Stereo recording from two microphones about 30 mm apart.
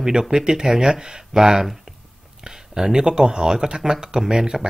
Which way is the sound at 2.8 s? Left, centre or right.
Right.